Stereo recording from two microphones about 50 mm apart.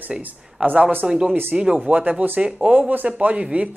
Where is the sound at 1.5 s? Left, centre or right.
Centre.